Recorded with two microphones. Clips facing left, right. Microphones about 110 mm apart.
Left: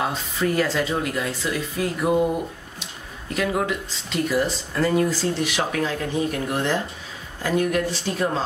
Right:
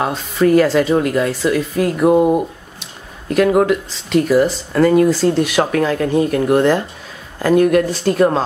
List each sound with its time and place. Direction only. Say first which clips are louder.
0.0 s speech: right 8 dB; 60° right (ahead or behind)
3.3 s speech: right 11 dB; 60° right (ahead or behind)